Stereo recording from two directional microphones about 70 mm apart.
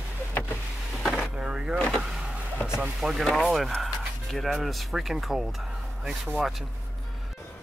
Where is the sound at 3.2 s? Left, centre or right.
Centre.